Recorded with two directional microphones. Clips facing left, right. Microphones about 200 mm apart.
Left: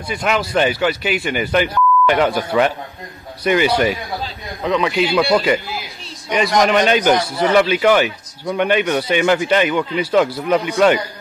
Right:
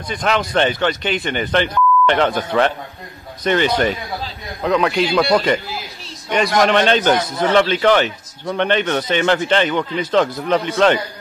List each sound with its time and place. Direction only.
0.1 s a man's voice: 10° left (ahead or behind)